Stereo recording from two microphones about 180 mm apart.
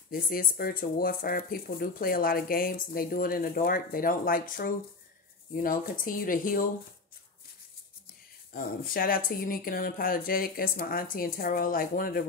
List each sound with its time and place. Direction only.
0.1 s speech: 55° left (ahead or behind)
8.5 s speech: 55° left (ahead or behind)